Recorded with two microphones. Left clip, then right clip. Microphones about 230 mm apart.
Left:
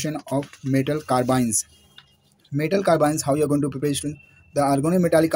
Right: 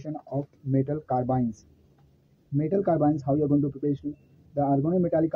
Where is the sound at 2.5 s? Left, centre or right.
Left.